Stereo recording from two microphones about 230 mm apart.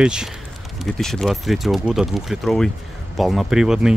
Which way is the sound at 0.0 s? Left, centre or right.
Centre.